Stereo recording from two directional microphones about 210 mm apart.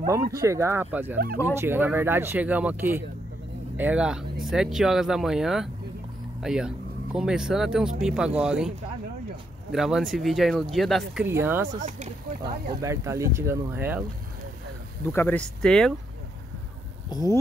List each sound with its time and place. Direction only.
0.0 s speech: 10° right (ahead or behind)
11.2 s speech: 10° right (ahead or behind)
12.8 s speech: 15° right (ahead or behind)
15.0 s speech: 10° left (ahead or behind)
17.1 s speech: 20° left (ahead or behind)